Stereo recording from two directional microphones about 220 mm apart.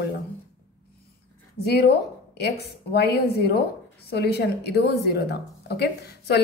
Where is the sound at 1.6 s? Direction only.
45° left (ahead or behind).